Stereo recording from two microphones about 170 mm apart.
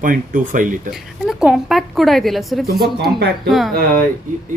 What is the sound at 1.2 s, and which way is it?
A woman's voice, centre (ahead or behind).